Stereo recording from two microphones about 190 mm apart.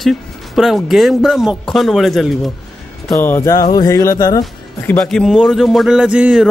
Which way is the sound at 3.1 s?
10° left (ahead or behind).